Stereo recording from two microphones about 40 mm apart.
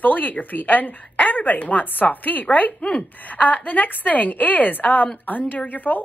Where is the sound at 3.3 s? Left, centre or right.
Left.